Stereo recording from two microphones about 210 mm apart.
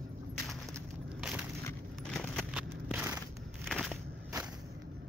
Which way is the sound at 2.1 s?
Centre (ahead or behind).